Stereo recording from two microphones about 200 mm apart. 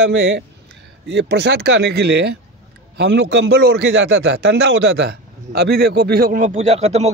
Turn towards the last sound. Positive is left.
turn(degrees=-30)  # may be behind; listen again after turning